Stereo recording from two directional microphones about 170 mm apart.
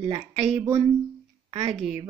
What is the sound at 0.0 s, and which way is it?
Speech, 30° right (ahead or behind).